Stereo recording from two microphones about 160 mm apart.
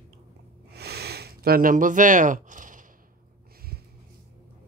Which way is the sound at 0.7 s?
90° right.